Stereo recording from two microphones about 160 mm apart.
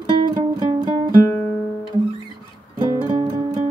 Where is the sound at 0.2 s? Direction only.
25° right (ahead or behind).